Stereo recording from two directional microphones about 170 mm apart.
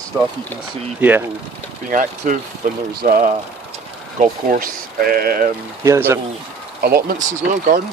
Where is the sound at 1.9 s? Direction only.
50° right (ahead or behind).